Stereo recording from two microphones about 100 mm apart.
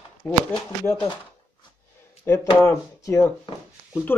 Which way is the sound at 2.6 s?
30° left (ahead or behind).